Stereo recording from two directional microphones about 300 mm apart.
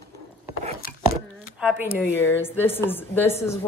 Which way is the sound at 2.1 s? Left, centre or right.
Centre.